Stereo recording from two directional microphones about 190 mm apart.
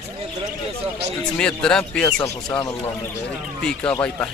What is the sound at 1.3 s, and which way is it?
Speech, 5° left (ahead or behind).